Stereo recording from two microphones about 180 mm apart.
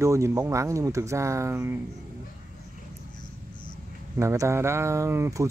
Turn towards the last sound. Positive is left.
turn(degrees=-15)  # may be behind; listen again after turning